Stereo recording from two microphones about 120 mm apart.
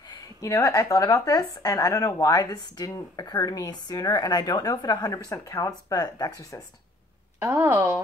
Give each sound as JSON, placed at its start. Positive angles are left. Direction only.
{"t": 0.1, "sound": "a woman's voice", "side_deg": 25}
{"t": 7.3, "sound": "speech", "side_deg": -20}